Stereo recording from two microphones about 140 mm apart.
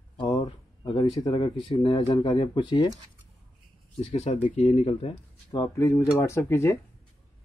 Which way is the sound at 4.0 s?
45° left (ahead or behind).